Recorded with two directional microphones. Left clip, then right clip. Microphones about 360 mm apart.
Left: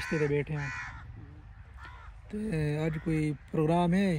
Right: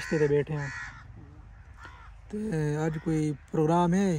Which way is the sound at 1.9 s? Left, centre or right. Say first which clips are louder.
Right 3 dB; centre.